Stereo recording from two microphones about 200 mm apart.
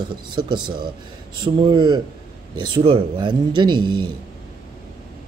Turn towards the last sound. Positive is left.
turn(degrees=-25)  # may be behind; listen again after turning